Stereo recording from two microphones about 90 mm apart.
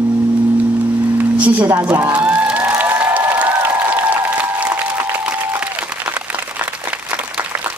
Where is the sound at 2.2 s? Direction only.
15° right (ahead or behind).